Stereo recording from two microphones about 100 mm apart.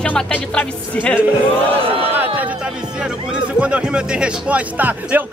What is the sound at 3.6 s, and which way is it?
Speech, 10° right (ahead or behind).